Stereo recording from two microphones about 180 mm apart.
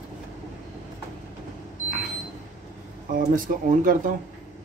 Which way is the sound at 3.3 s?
45° right (ahead or behind).